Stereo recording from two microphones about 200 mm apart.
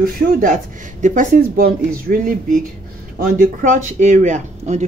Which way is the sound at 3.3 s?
40° right (ahead or behind).